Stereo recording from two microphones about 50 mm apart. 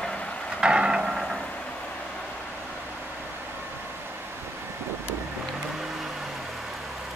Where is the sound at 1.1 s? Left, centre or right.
Centre.